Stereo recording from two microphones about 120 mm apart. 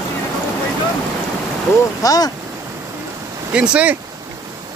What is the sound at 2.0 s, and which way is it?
Speech, 30° left (ahead or behind).